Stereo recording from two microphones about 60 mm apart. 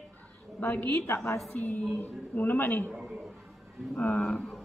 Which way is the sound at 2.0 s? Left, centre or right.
Left.